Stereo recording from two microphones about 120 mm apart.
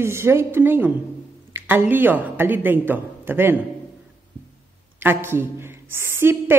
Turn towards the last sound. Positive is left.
turn(degrees=-20)  # may be behind; listen again after turning